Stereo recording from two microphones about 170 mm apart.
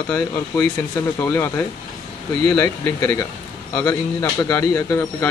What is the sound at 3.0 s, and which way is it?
A man's voice, 20° left (ahead or behind).